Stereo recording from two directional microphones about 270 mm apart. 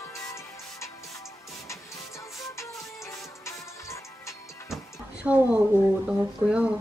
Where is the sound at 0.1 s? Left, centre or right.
Centre.